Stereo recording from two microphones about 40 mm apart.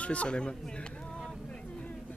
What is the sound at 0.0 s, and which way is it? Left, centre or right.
Speech, left.